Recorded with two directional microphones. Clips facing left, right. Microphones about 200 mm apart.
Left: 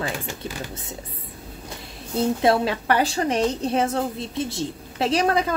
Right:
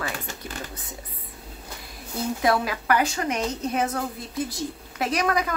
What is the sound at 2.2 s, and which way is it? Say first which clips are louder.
A woman's voice: left 4 dB; 25° left (ahead or behind).